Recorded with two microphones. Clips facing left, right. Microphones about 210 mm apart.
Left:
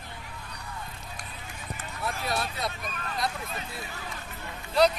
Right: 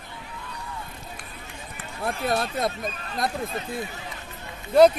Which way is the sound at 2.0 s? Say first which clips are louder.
Right 6 dB; 50° right (ahead or behind).